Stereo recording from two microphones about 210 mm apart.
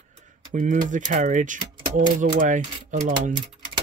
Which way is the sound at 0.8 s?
35° right (ahead or behind).